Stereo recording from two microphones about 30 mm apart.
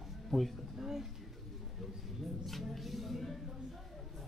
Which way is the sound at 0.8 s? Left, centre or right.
Centre.